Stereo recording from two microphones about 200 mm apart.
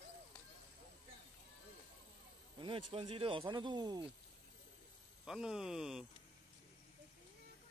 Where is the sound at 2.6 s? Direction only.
25° right (ahead or behind).